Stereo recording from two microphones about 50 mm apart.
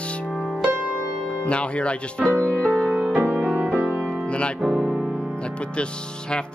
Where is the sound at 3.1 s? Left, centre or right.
Right.